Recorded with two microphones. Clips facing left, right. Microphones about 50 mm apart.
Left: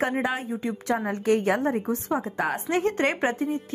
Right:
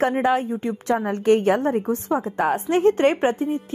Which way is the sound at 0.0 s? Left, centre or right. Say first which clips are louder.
Right 6 dB; right.